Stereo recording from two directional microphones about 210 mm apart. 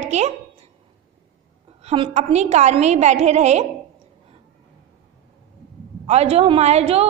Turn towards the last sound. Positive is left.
turn(degrees=-30)  # may be behind; listen again after turning